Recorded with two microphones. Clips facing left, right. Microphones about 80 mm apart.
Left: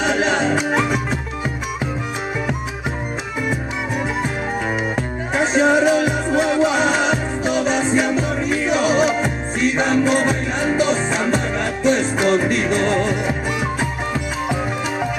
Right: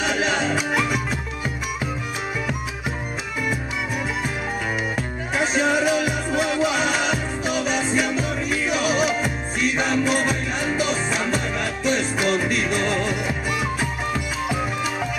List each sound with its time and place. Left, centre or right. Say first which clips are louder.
0.0 s music: left 4 dB; left
4.9 s music: left 4 dB; left